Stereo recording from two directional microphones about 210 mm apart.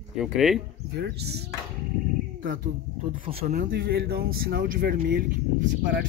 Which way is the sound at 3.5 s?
40° right (ahead or behind).